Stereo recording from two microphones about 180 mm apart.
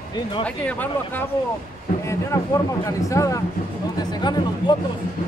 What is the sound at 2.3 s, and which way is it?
Speech, 20° left (ahead or behind).